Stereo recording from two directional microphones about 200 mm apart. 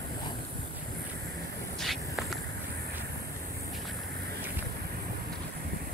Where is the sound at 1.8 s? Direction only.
Centre (ahead or behind).